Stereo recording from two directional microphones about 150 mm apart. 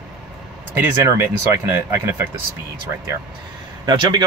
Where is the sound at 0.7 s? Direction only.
15° right (ahead or behind).